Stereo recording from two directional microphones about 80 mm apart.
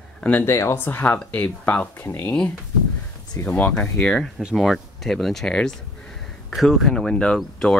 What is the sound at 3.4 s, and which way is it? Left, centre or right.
Speech, centre.